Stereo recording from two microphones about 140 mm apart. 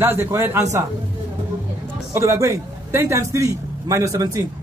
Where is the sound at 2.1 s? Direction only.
20° right (ahead or behind).